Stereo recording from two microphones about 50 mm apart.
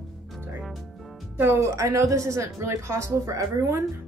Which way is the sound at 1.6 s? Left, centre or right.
Right.